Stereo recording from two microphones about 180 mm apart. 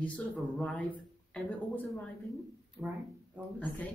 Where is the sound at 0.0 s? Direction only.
5° left (ahead or behind).